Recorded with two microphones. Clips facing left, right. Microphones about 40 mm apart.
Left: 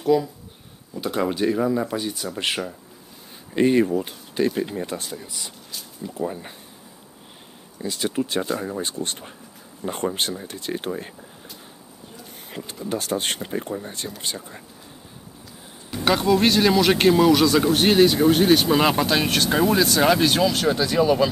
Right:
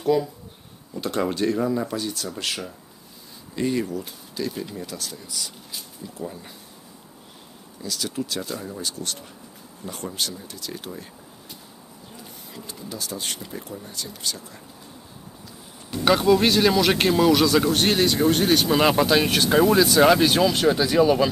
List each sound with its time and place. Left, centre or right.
0.0 s speech: centre
2.3 s speech: left
3.5 s speech: left
7.8 s speech: left
12.8 s speech: left
15.9 s speech: centre